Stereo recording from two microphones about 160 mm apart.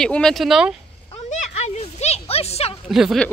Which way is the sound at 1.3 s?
45° left (ahead or behind).